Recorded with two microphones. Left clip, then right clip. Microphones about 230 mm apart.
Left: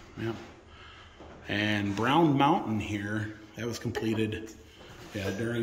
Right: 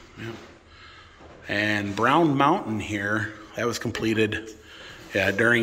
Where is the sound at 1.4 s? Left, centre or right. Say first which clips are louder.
Right 5 dB; centre.